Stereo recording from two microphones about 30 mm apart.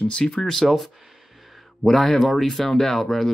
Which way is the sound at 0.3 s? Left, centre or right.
Centre.